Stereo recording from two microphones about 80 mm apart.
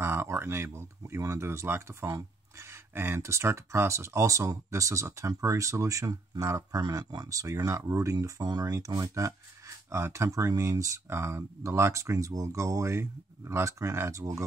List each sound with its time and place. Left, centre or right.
0.0 s speech: right
6.8 s speech: right